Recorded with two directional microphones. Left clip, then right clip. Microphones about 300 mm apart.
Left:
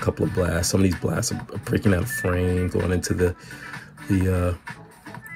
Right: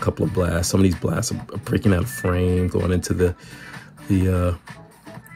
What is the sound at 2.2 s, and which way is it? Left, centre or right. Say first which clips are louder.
Speech: right 5 dB; centre.